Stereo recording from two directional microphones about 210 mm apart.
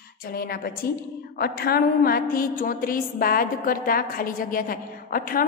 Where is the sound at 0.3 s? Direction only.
45° left (ahead or behind).